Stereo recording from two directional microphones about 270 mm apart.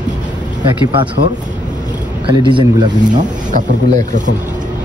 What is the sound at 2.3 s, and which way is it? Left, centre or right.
A man's voice, centre.